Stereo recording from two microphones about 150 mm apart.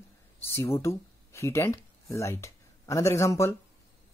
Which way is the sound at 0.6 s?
20° left (ahead or behind).